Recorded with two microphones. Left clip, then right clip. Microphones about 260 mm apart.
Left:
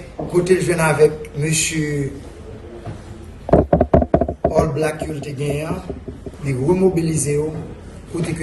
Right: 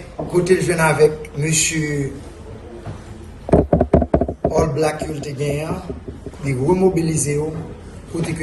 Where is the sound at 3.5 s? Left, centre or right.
Right.